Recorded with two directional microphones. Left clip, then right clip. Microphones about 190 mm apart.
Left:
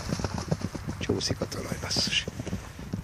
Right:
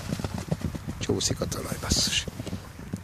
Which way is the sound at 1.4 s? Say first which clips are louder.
Right 2 dB; 30° right (ahead or behind).